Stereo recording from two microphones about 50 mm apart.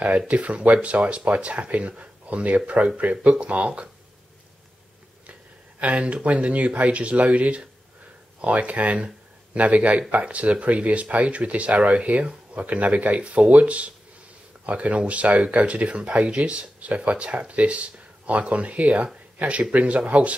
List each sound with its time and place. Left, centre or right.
0.3 s speech: right
5.8 s speech: right